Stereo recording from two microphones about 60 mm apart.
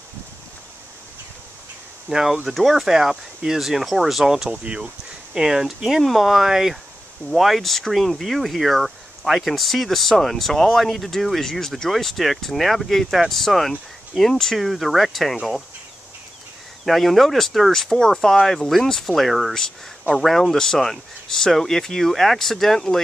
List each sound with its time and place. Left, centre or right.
2.0 s speech: centre
4.6 s a sound: centre
5.4 s speech: centre
16.8 s speech: centre